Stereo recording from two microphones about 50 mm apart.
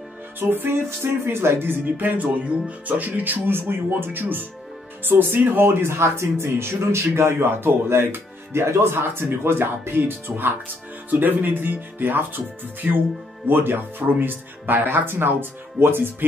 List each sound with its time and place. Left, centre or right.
0.4 s speech: right